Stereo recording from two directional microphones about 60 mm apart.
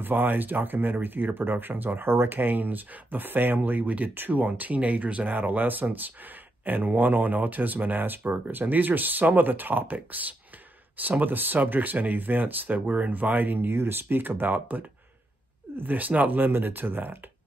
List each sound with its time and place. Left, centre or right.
0.0 s speech: right